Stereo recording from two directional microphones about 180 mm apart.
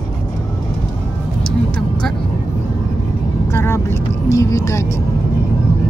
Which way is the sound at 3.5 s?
15° left (ahead or behind).